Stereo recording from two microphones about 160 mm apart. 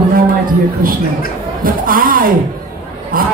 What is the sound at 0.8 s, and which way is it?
Speech, 60° right (ahead or behind).